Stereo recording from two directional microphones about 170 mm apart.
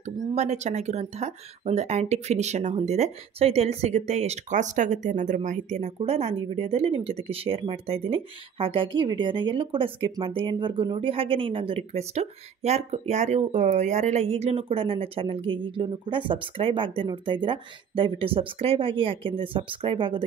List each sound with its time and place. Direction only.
0.0 s speech: 40° right (ahead or behind)